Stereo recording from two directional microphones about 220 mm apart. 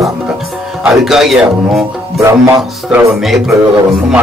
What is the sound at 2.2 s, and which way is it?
Music, 10° right (ahead or behind).